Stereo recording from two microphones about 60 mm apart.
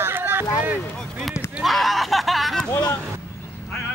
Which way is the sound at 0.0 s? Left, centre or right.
Right.